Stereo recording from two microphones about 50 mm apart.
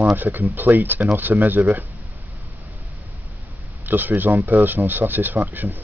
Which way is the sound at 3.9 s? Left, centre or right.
Right.